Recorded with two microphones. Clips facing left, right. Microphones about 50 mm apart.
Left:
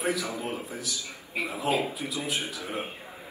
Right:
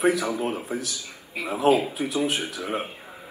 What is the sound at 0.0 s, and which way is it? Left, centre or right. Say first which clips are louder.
Speech: right 7 dB; right.